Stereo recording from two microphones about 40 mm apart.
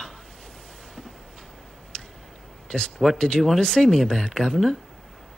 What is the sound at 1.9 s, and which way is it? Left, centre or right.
Tick-tock, left.